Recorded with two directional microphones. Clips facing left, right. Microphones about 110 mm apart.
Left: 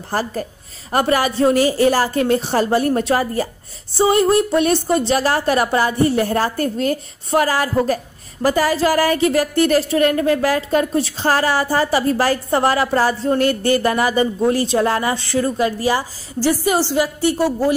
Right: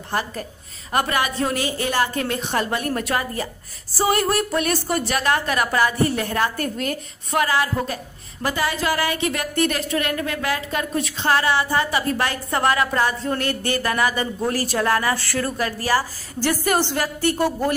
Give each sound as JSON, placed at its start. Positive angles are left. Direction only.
{"t": 0.1, "sound": "a woman's voice", "side_deg": 35}